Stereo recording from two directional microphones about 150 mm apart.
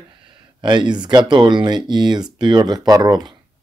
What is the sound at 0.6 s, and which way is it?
Speech, 30° right (ahead or behind).